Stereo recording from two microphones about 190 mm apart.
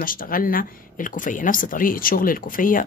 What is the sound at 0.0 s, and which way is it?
Speech, 50° left (ahead or behind).